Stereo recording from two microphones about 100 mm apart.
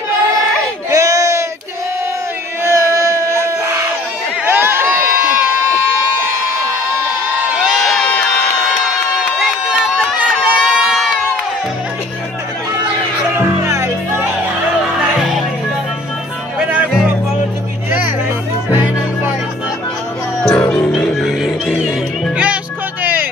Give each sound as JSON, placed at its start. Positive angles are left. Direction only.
{"t": 0.8, "sound": "a sound", "side_deg": -35}
{"t": 2.6, "sound": "a sound", "side_deg": -30}
{"t": 7.3, "sound": "crowd", "side_deg": -5}
{"t": 9.9, "sound": "crowd", "side_deg": -10}
{"t": 13.7, "sound": "music", "side_deg": -25}
{"t": 14.8, "sound": "music", "side_deg": -5}
{"t": 20.4, "sound": "music", "side_deg": 5}